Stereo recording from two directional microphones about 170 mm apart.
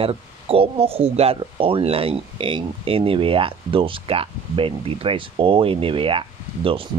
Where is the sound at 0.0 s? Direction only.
35° right (ahead or behind).